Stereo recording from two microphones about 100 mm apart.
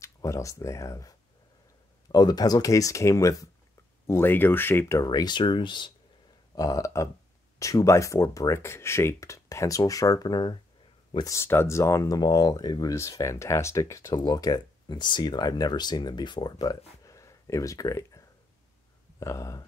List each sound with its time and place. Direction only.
0.0 s speech: 30° left (ahead or behind)
2.1 s speech: 40° left (ahead or behind)
4.1 s speech: 20° left (ahead or behind)
4.9 s speech: 40° left (ahead or behind)
6.5 s speech: 35° left (ahead or behind)
11.2 s speech: 25° left (ahead or behind)
12.2 s speech: 40° left (ahead or behind)
14.2 s speech: 40° left (ahead or behind)